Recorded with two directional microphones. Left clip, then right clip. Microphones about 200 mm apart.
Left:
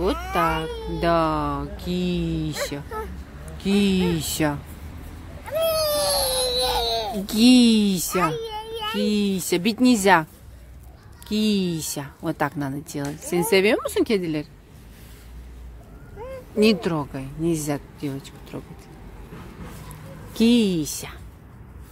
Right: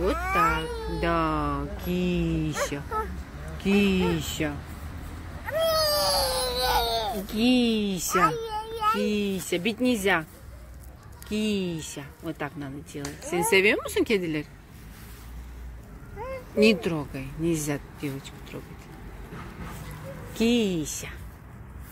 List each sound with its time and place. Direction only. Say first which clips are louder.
0.7 s baby cry: left 2 dB; 5° right (ahead or behind)
0.9 s speech: left 5 dB; 15° left (ahead or behind)
4.4 s speech: left 8 dB; 30° left (ahead or behind)
5.5 s baby cry: left 2 dB; 20° left (ahead or behind)
7.2 s speech: left 9 dB; 40° left (ahead or behind)
8.1 s a sound: right 4 dB; 15° left (ahead or behind)
9.1 s speech: left 4 dB; 30° left (ahead or behind)
11.2 s speech: left 4 dB; 30° left (ahead or behind)
13.3 s speech: left 2 dB; 20° left (ahead or behind)
16.5 s speech: left 2 dB; 10° left (ahead or behind)
20.3 s speech: left 4 dB; 30° left (ahead or behind)